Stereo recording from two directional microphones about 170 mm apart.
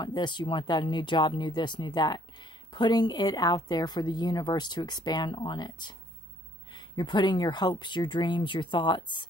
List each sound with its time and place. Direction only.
0.0 s speech: 25° left (ahead or behind)